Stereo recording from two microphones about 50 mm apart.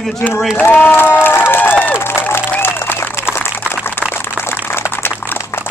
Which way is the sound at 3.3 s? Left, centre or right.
Left.